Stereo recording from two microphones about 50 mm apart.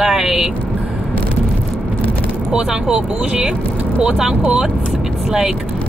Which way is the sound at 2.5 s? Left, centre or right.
Centre.